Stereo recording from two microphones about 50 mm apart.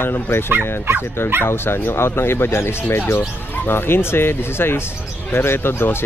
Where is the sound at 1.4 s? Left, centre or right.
Left.